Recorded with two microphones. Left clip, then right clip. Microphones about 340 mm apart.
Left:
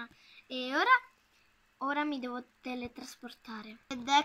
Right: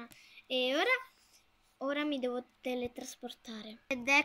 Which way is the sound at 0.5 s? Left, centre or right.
Centre.